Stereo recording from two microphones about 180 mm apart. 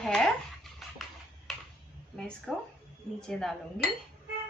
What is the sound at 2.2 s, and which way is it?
A woman's voice, 5° left (ahead or behind).